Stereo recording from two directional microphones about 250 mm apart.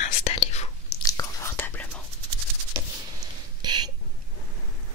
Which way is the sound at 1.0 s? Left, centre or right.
Centre.